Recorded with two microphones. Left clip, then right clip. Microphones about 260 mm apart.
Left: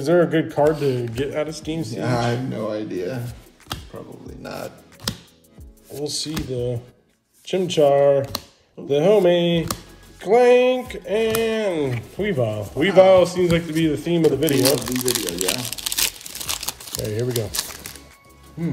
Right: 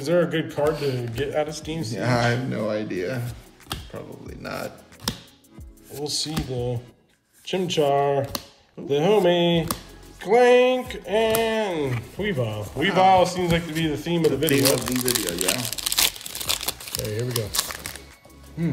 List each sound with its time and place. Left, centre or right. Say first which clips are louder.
0.0 s speech: left 4 dB; centre
2.0 s speech: right 1 dB; right
5.9 s speech: left 1 dB; centre
15.4 s crumpling: left 1 dB; centre
16.9 s speech: left 5 dB; centre